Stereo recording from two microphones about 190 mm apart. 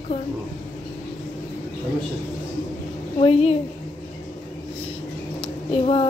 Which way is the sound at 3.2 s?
30° left (ahead or behind).